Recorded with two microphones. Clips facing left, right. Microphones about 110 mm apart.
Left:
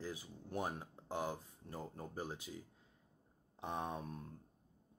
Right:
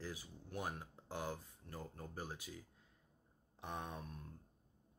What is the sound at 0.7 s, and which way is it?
Speech, 20° left (ahead or behind).